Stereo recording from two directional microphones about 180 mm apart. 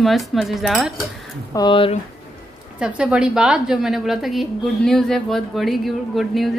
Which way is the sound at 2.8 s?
5° right (ahead or behind).